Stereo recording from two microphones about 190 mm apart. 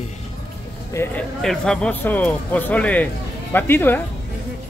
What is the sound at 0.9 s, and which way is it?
A man's voice, 5° left (ahead or behind).